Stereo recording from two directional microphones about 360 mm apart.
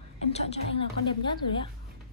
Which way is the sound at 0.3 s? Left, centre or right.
Centre.